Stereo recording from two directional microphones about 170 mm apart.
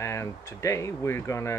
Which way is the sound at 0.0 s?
15° left (ahead or behind).